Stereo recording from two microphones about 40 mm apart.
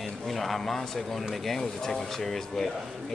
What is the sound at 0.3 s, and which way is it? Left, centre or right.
Speech, centre.